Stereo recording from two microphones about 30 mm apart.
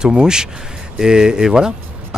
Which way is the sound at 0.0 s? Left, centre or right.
Right.